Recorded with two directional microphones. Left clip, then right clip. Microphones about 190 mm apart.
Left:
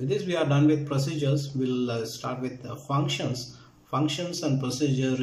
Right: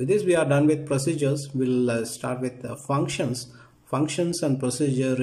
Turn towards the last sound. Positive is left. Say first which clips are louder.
# right 3 dB
turn(degrees=-30)  # may be behind; listen again after turning